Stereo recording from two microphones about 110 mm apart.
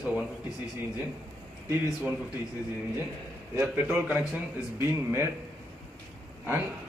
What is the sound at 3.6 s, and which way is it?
A man's voice, 20° right (ahead or behind).